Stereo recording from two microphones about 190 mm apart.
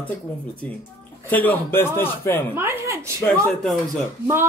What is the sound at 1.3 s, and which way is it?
Speech, 10° left (ahead or behind).